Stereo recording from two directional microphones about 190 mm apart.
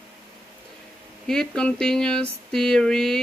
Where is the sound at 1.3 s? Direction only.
5° left (ahead or behind).